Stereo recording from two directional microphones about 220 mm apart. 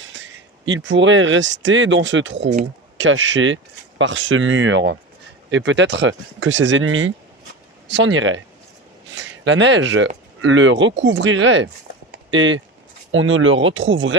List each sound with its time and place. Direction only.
0.0 s speech: 55° right (ahead or behind)